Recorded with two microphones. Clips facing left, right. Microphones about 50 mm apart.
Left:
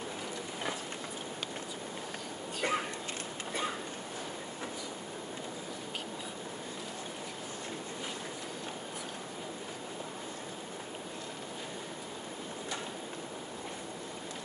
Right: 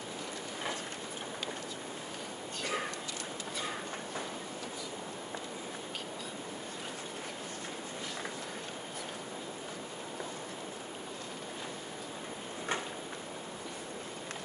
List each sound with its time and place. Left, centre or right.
2.6 s speech: left